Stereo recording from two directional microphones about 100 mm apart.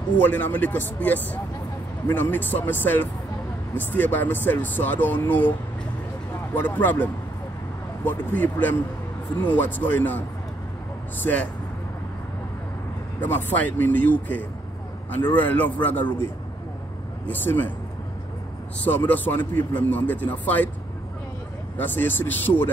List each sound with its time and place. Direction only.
0.3 s a man's voice: 15° left (ahead or behind)
6.5 s speech: 20° left (ahead or behind)
13.2 s a man's voice: 15° left (ahead or behind)
17.3 s speech: 20° left (ahead or behind)
18.9 s a man's voice: 20° left (ahead or behind)
21.7 s speech: 20° left (ahead or behind)